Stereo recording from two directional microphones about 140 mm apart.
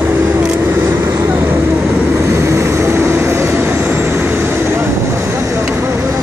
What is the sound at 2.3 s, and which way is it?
Vehicle, 20° right (ahead or behind).